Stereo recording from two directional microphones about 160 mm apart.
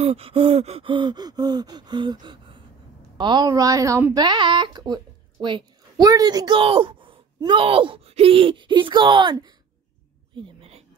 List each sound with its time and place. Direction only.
0.0 s a woman's voice: 40° right (ahead or behind)
10.3 s whispering: 35° right (ahead or behind)